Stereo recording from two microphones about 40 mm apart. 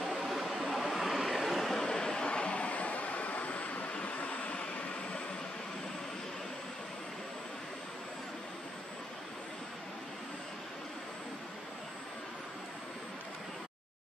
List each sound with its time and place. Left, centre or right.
0.0 s vehicle: centre
1.9 s vehicle: centre; by 4.6 s left